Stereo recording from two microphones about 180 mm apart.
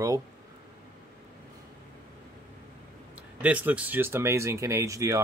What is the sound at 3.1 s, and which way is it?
Speech, 5° right (ahead or behind).